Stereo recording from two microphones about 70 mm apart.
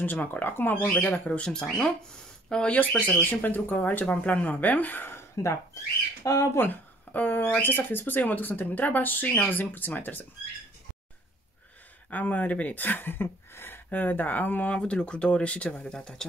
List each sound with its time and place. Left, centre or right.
0.0 s speech: left
3.1 s speech: left
6.7 s speech: left
12.1 s speech: left